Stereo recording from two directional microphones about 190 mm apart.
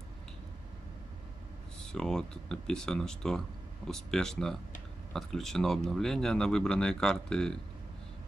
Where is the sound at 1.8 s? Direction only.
5° left (ahead or behind).